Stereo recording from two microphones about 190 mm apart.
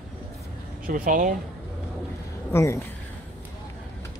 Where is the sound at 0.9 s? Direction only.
45° right (ahead or behind).